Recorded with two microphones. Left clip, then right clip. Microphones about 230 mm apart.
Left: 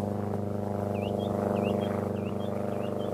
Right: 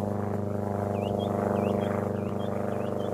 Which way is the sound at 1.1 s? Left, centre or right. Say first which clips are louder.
Right 1 dB; right.